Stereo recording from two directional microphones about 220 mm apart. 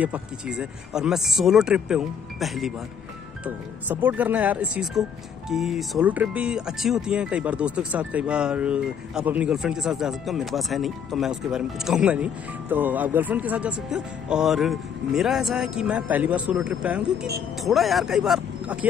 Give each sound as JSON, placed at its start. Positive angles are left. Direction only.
{"t": 0.0, "sound": "speech", "side_deg": -5}